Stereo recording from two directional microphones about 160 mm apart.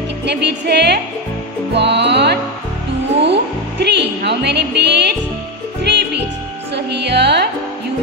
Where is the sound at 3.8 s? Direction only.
90° right.